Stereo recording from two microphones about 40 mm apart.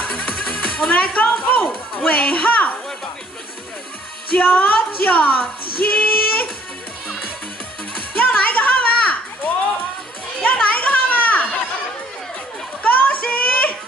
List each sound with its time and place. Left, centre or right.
0.0 s music: left
2.0 s speech: left
4.5 s speech: left
8.1 s music: left
10.4 s children playing: left
12.8 s a sound: left